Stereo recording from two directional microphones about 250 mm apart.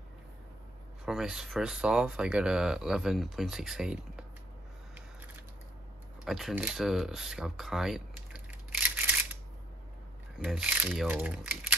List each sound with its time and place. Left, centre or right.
1.0 s speech: centre
6.2 s a sound: centre
10.4 s speech: centre